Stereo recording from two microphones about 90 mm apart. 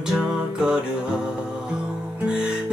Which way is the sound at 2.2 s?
10° right (ahead or behind).